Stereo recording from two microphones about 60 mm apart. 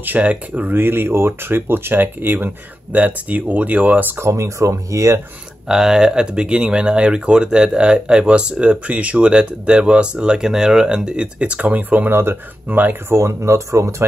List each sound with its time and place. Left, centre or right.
0.0 s speech: right
0.7 s speech: right
4.2 s speech: right
5.7 s speech: centre; by 12.1 s right
12.1 s speech: right
12.6 s speech: right
13.1 s speech: right